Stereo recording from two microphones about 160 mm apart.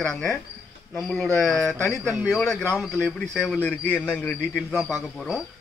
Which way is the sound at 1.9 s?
15° right (ahead or behind).